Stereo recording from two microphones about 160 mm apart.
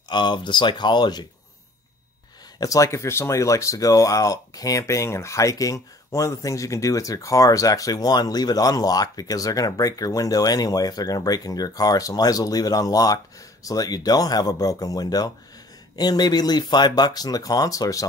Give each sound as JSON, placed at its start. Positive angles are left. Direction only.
{"t": 0.1, "sound": "speech", "side_deg": 30}
{"t": 2.6, "sound": "speech", "side_deg": 20}